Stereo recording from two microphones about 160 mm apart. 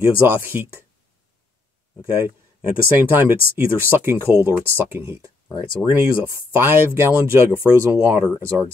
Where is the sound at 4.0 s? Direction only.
15° right (ahead or behind).